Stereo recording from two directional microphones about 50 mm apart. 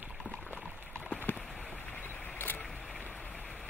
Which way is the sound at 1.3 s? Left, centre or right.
Left.